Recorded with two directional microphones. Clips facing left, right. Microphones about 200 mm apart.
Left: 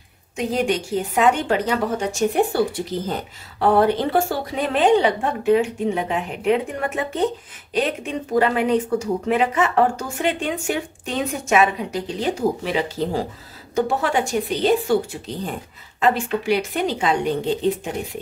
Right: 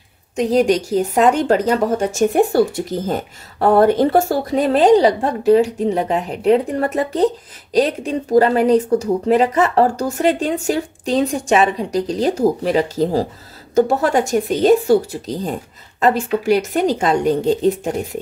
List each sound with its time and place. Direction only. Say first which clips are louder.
0.4 s speech: right 7 dB; 40° right (ahead or behind)